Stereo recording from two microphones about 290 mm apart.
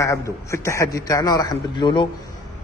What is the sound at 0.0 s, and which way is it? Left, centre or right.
A man's voice, centre.